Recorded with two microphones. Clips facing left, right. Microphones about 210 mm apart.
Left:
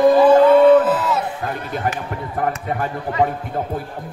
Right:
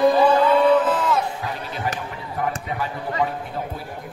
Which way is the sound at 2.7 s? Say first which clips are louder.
Left 4 dB; 50° left (ahead or behind).